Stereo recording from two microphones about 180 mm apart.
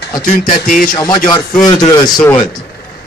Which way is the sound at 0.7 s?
50° left (ahead or behind).